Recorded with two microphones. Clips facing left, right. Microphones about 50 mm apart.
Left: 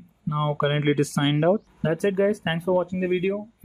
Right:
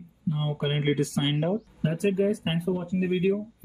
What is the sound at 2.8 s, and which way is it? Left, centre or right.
Speech, left.